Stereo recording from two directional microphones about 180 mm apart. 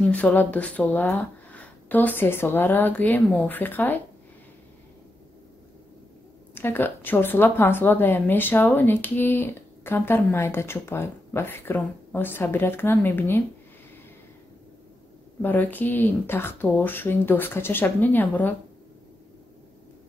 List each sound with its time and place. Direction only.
0.0 s speech: 10° left (ahead or behind)
6.5 s speech: 10° left (ahead or behind)
15.4 s speech: 10° left (ahead or behind)